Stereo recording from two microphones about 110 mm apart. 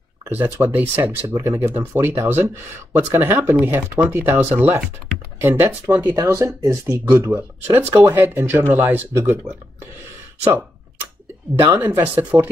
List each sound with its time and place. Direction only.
0.4 s speech: 20° right (ahead or behind)
1.2 s speech: 30° right (ahead or behind)
11.6 s speech: 25° right (ahead or behind)